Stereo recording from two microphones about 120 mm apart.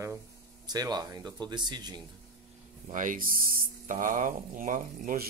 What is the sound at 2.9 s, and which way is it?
Speech, 90° right.